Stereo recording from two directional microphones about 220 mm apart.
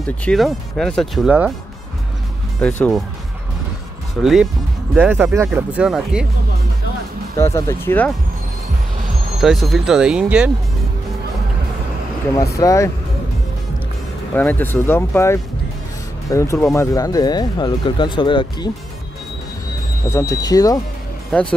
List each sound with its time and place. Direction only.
0.0 s speech: 5° left (ahead or behind)
2.6 s speech: 5° left (ahead or behind)
4.2 s speech: centre (ahead or behind)
7.3 s speech: 10° left (ahead or behind)
9.4 s speech: centre (ahead or behind)
12.4 s speech: 15° left (ahead or behind)
14.3 s speech: 10° left (ahead or behind)
20.1 s speech: 15° left (ahead or behind)
21.3 s speech: 5° left (ahead or behind)